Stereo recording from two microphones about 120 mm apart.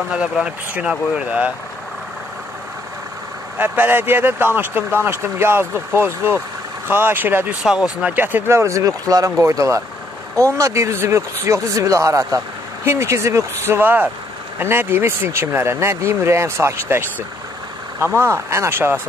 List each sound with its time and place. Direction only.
0.1 s speech: 5° right (ahead or behind)
3.5 s speech: 15° right (ahead or behind)